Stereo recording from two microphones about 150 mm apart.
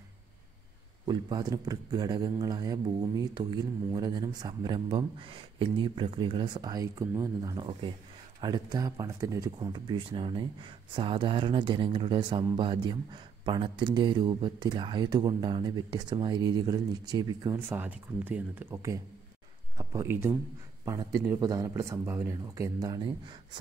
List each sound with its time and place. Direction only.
1.0 s speech: 30° right (ahead or behind)